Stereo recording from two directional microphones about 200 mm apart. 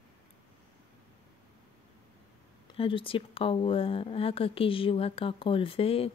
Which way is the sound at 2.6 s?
25° left (ahead or behind).